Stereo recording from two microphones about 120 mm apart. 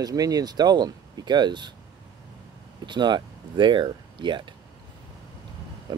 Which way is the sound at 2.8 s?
40° right (ahead or behind).